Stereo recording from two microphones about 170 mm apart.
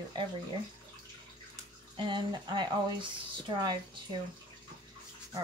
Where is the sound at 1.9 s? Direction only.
25° right (ahead or behind).